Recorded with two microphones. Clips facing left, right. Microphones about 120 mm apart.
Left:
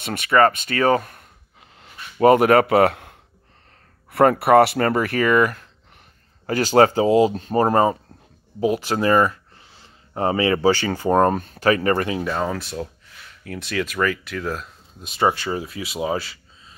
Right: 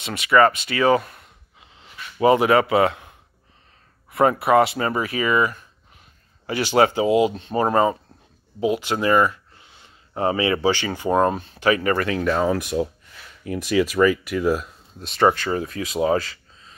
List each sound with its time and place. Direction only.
0.0 s speech: 50° left (ahead or behind)
6.4 s speech: 45° left (ahead or behind)
12.2 s speech: 5° left (ahead or behind)
12.4 s speech: 10° right (ahead or behind)
15.0 s speech: 10° left (ahead or behind)